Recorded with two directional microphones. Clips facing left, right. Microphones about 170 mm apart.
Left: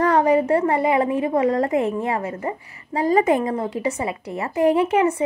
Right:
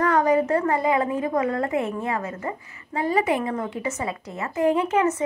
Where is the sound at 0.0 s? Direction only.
30° left (ahead or behind).